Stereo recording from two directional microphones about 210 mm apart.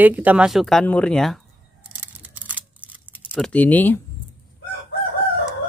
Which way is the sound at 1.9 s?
10° right (ahead or behind).